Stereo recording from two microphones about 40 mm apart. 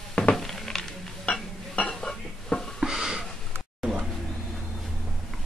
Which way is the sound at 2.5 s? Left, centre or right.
Left.